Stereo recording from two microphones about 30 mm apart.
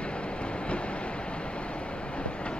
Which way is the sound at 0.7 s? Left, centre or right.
Left.